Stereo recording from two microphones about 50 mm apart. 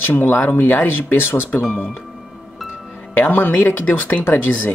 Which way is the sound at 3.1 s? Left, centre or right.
Left.